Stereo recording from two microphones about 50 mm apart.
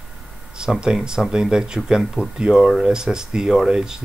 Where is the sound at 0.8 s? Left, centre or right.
Centre.